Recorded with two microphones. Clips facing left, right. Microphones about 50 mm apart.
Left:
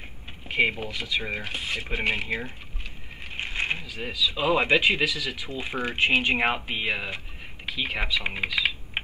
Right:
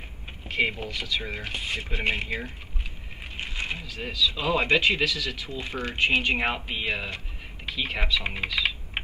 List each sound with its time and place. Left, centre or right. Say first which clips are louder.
0.5 s speech: left 2 dB; centre
1.4 s speech: even; centre
2.2 s speech: left 2 dB; centre
3.3 s a sound: left 4 dB; left
3.8 s speech: right 1 dB; centre